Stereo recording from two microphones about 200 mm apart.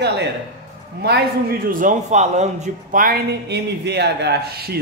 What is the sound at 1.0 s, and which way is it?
Speech, 50° right (ahead or behind).